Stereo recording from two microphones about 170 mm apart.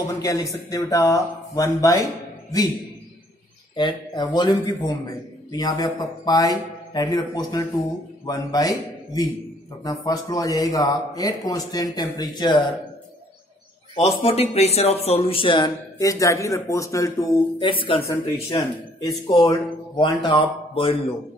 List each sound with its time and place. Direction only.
0.0 s speech: 20° left (ahead or behind)
3.7 s speech: 25° left (ahead or behind)
13.9 s speech: 35° left (ahead or behind)